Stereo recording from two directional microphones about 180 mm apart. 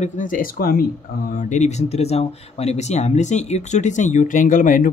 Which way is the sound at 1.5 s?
40° left (ahead or behind).